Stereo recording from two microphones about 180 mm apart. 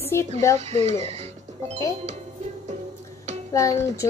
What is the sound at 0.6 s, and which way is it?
Speech, 35° right (ahead or behind).